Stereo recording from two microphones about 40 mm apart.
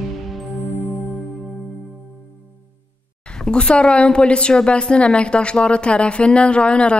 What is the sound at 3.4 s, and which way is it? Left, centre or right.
Speech, left.